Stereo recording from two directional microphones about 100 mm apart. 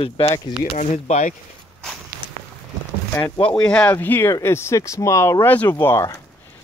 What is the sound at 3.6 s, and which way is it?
Speech, 15° left (ahead or behind).